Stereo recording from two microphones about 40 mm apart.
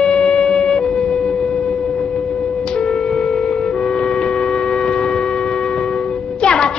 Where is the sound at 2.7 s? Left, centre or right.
Centre.